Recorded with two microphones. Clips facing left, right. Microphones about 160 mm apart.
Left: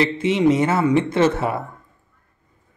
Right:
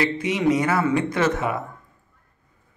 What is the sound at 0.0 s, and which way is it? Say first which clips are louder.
Speech: left 4 dB; 25° left (ahead or behind).